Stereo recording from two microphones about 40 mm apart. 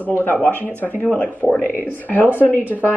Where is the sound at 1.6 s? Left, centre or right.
Left.